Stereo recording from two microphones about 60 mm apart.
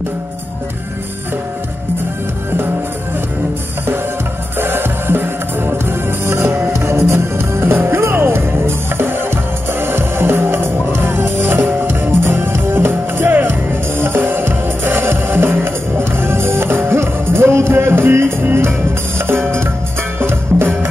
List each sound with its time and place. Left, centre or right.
4.6 s music: right